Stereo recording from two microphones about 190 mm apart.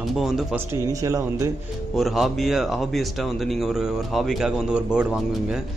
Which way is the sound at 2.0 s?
Centre (ahead or behind).